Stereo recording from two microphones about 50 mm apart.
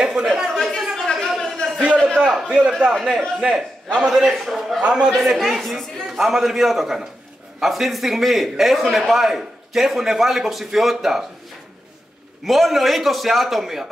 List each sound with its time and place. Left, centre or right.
0.0 s a sound: centre
0.5 s a sound: centre
2.1 s a man's voice: centre
2.4 s a man's voice: right
2.9 s a man's voice: centre
3.4 s a man's voice: centre
4.2 s a man's voice: centre
4.8 s a man's voice: centre
5.1 s a man's voice: centre
12.4 s a man's voice: centre